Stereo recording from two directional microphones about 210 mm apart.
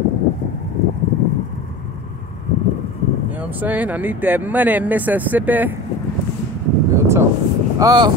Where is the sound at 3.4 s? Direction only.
10° right (ahead or behind).